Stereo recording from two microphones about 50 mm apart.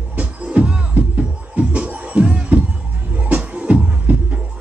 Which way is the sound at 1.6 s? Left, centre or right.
Right.